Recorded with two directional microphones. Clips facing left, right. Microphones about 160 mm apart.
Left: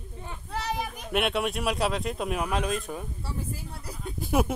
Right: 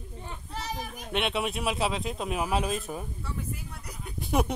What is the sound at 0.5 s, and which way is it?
Children playing, 65° left (ahead or behind).